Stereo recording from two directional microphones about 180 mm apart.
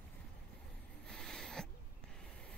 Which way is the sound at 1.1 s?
5° left (ahead or behind).